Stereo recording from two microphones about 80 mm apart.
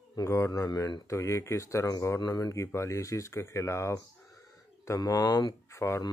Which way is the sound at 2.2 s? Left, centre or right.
Left.